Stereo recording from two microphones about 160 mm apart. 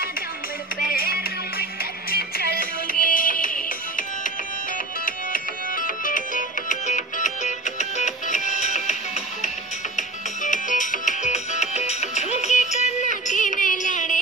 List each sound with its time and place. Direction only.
0.7 s music: 65° left (ahead or behind)
2.5 s music: 65° left (ahead or behind)
5.0 s music: 60° left (ahead or behind)
9.9 s music: 50° left (ahead or behind)